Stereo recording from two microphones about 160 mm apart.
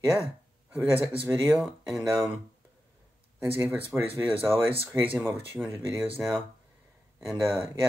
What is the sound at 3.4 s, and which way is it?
Speech, 15° right (ahead or behind).